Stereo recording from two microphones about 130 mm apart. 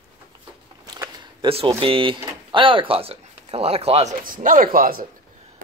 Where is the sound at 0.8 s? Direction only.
30° right (ahead or behind).